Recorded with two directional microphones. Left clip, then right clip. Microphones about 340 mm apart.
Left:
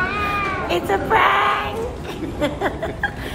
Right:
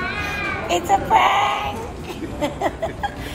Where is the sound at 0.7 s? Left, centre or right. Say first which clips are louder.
Right 4 dB; centre.